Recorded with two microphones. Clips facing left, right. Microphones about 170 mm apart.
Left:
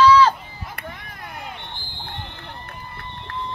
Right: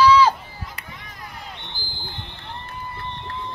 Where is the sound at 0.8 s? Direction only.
55° left (ahead or behind).